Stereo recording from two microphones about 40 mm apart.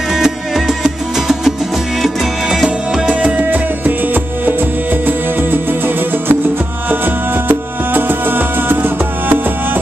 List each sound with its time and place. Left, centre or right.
0.1 s music: centre
3.1 s music: right
3.4 s music: right
7.4 s music: right